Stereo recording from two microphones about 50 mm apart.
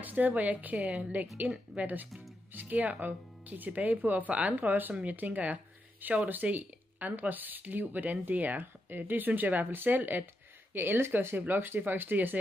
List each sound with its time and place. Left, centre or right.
0.0 s speech: right
0.7 s a woman's voice: centre
1.8 s speech: right